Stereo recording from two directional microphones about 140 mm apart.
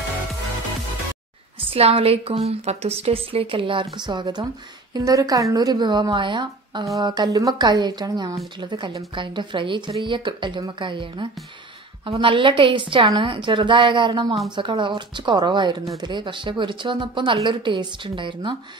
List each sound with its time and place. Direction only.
1.7 s a woman's voice: 45° right (ahead or behind)